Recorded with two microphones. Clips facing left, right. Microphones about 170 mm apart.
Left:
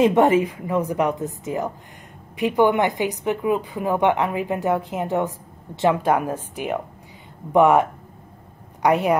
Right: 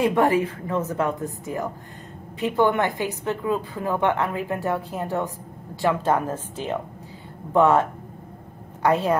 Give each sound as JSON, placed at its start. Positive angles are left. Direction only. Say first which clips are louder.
{"t": 0.0, "sound": "a woman's voice", "louder": "left 4 dB", "side_deg": 20}
{"t": 8.8, "sound": "a woman's voice", "louder": "left 2 dB", "side_deg": 15}